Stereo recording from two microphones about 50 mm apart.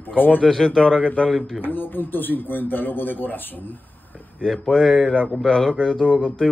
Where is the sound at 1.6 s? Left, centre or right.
Left.